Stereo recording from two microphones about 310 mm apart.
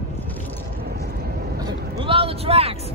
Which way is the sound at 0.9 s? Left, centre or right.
Right.